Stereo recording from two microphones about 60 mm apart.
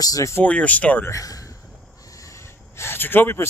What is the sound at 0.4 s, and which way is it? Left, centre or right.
Speech, left.